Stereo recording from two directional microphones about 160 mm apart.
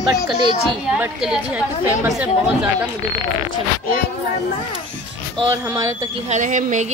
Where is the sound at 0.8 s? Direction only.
5° right (ahead or behind).